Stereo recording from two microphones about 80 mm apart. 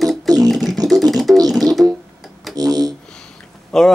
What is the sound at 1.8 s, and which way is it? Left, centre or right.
Music, centre.